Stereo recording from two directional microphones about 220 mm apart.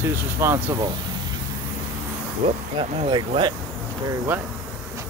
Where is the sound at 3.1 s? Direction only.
20° right (ahead or behind).